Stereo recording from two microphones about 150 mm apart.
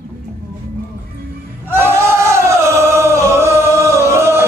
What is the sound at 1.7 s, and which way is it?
Singing, 15° right (ahead or behind).